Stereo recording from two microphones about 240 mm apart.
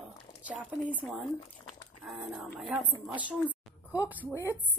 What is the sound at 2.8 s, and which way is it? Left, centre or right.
Speech, centre.